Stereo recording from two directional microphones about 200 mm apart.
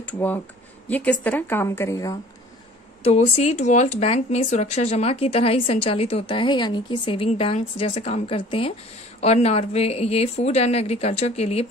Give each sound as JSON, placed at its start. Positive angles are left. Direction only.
{"t": 0.0, "sound": "a woman's voice", "side_deg": 10}
{"t": 3.0, "sound": "a woman's voice", "side_deg": 35}